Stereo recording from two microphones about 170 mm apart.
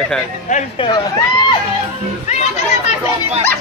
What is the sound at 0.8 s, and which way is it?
Speech, 25° left (ahead or behind).